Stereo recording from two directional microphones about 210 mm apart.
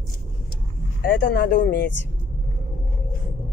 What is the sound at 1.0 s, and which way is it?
Speech, 40° left (ahead or behind).